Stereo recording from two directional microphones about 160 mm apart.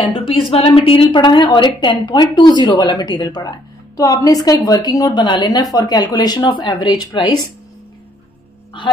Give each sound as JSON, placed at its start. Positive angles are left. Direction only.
{"t": 0.0, "sound": "a woman's voice", "side_deg": 35}